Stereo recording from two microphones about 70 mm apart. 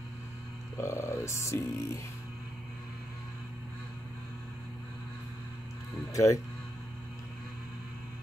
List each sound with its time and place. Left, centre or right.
0.7 s speech: left
6.1 s speech: left